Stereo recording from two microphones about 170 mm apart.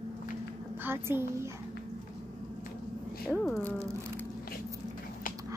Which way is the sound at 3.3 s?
Centre (ahead or behind).